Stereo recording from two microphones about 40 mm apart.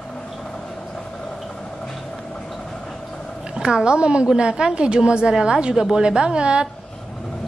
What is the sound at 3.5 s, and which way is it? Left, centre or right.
A woman's voice, right.